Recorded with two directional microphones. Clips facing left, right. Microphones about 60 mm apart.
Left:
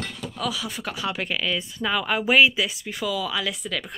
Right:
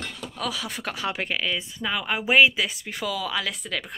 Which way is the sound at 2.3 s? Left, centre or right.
Right.